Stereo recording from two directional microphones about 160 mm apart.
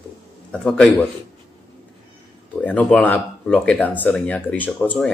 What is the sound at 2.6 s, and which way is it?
Speech, 10° left (ahead or behind).